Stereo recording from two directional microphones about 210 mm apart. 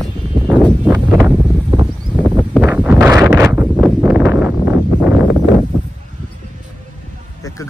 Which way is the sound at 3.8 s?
5° right (ahead or behind).